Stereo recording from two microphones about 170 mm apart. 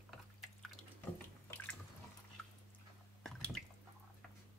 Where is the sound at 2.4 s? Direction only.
5° left (ahead or behind).